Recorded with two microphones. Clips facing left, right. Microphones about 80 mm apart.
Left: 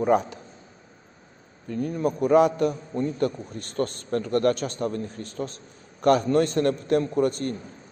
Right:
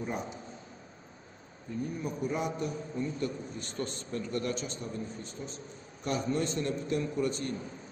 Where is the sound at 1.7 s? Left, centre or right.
Left.